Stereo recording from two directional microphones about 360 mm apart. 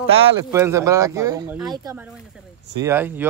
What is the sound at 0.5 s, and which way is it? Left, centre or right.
Speech, centre.